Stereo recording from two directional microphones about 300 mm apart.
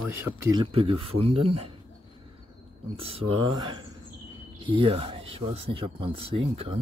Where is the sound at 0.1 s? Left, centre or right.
Centre.